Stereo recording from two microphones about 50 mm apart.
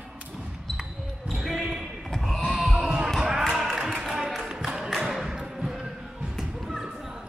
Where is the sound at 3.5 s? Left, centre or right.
Centre.